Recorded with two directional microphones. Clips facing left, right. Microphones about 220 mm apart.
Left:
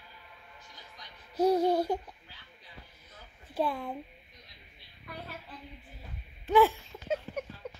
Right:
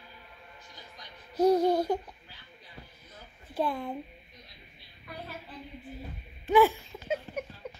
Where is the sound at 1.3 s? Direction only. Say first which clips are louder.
Right 2 dB; 5° left (ahead or behind).